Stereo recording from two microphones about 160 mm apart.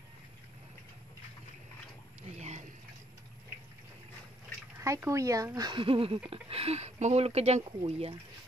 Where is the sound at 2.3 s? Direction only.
45° right (ahead or behind).